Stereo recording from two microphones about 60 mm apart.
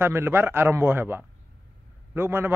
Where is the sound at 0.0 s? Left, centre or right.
Right.